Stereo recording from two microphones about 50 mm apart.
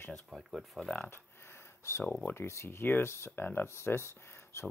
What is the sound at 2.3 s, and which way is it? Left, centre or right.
Speech, left.